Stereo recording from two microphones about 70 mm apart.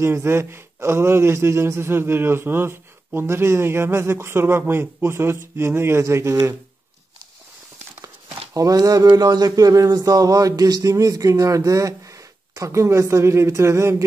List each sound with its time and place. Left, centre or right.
0.0 s speech: right
8.5 s speech: right
13.1 s a sound: right